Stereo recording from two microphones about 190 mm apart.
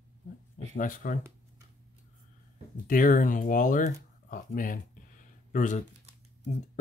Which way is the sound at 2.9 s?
45° left (ahead or behind).